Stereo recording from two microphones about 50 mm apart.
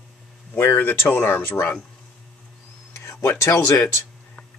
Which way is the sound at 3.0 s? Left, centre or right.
Left.